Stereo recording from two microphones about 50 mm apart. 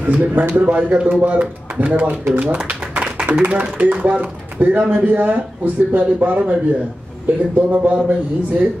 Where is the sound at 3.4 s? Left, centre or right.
Right.